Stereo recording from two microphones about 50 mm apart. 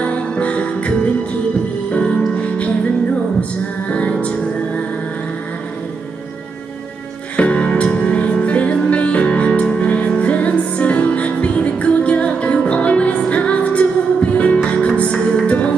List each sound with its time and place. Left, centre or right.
0.0 s music: left
3.9 s music: left
7.3 s music: left